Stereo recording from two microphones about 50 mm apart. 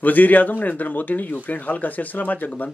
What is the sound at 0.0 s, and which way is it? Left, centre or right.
Speech, left.